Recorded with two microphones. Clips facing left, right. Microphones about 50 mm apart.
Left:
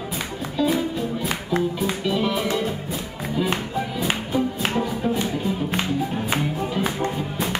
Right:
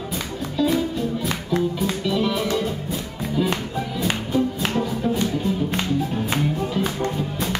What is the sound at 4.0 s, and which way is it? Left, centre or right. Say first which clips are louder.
Music: right 2 dB; centre.